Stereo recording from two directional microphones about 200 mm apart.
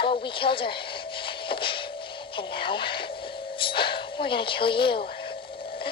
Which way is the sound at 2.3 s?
25° left (ahead or behind).